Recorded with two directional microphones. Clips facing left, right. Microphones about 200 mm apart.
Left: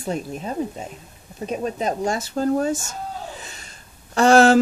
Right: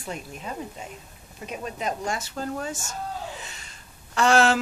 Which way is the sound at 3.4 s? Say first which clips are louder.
Left 3 dB; 40° left (ahead or behind).